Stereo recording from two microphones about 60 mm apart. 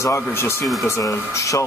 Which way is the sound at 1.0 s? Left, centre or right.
Left.